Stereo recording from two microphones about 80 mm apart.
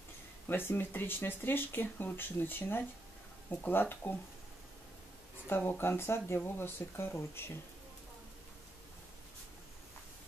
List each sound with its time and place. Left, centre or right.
0.5 s speech: left
5.7 s speech: left